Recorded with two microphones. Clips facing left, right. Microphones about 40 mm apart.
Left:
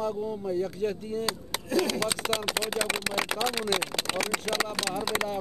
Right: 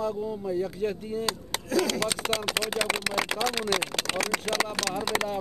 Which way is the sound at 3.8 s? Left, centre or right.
Right.